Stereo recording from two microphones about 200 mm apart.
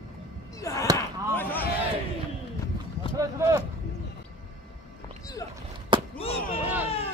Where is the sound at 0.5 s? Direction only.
15° left (ahead or behind).